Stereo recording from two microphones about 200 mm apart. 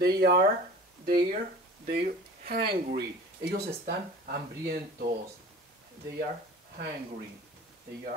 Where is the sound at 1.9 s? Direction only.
50° right (ahead or behind).